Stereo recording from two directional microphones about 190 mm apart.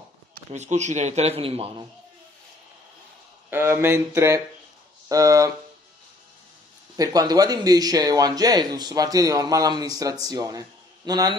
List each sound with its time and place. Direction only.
0.5 s speech: 35° right (ahead or behind)
3.4 s speech: 10° right (ahead or behind)
7.0 s speech: 20° right (ahead or behind)